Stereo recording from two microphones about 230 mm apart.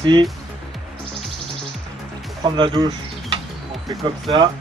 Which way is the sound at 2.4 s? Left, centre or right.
Centre.